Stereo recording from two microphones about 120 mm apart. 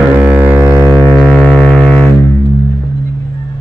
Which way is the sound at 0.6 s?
25° right (ahead or behind).